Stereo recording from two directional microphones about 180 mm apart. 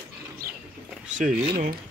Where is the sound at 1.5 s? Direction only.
55° right (ahead or behind).